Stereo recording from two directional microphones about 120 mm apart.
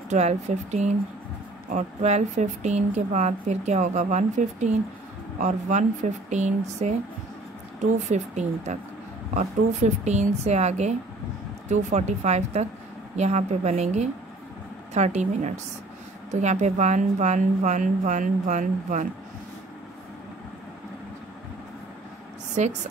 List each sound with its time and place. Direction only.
0.1 s a woman's voice: 75° right (ahead or behind); by 19.0 s 90° right
22.5 s speech: 80° right